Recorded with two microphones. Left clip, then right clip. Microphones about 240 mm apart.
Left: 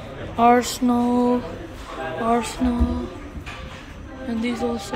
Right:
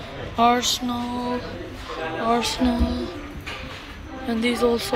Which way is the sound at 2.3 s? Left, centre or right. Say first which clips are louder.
Right 1 dB; centre.